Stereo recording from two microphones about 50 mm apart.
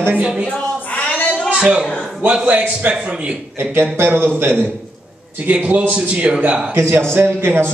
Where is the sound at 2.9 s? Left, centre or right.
Right.